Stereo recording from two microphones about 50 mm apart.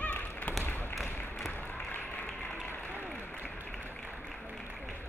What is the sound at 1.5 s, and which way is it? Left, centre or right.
Applause, left.